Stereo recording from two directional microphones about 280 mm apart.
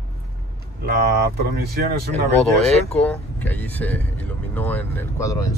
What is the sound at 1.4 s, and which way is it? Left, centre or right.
Speech, right.